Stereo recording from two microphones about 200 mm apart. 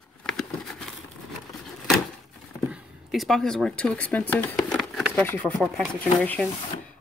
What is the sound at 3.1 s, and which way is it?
Speech, centre (ahead or behind).